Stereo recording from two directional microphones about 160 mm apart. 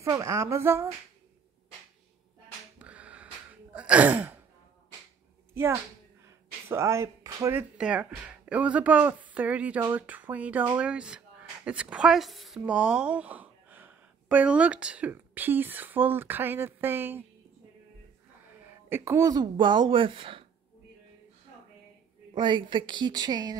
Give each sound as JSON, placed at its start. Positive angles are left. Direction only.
{"t": 0.0, "sound": "speech", "side_deg": -20}
{"t": 2.8, "sound": "a sound", "side_deg": -10}
{"t": 3.7, "sound": "sigh", "side_deg": -10}
{"t": 5.5, "sound": "speech", "side_deg": -15}
{"t": 6.2, "sound": "a sound", "side_deg": -20}
{"t": 7.7, "sound": "speech", "side_deg": -5}
{"t": 18.9, "sound": "speech", "side_deg": -15}
{"t": 22.3, "sound": "speech", "side_deg": -30}